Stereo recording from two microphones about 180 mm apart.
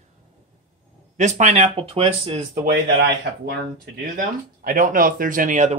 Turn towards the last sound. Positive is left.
turn(degrees=-45)  # may be behind; listen again after turning